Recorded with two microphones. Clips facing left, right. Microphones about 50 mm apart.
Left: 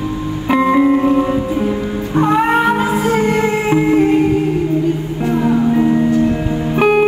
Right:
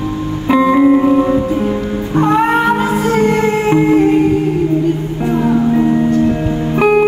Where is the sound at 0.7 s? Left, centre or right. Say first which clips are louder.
Right 3 dB; centre.